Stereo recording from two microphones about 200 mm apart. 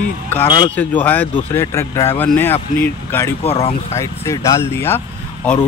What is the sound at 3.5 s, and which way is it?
Speech, 30° left (ahead or behind).